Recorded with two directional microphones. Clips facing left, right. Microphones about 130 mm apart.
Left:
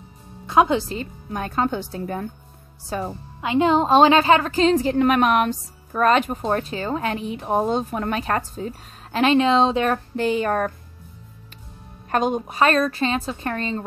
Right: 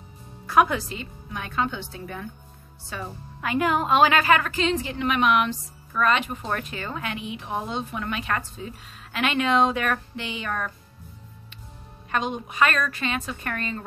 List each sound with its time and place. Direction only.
0.5 s speech: 25° left (ahead or behind)
0.9 s a woman's voice: 40° left (ahead or behind)
3.3 s a woman's voice: 25° left (ahead or behind)
10.1 s speech: 45° left (ahead or behind)
12.1 s a woman's voice: 45° left (ahead or behind)